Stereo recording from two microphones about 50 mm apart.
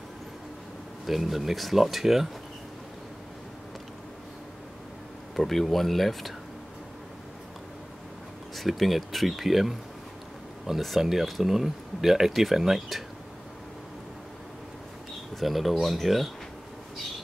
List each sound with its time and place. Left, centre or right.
1.0 s speech: centre
5.3 s speech: centre
8.5 s speech: centre
15.3 s speech: centre